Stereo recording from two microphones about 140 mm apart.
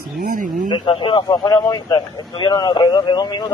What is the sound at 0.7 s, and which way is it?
A man's voice, 35° left (ahead or behind).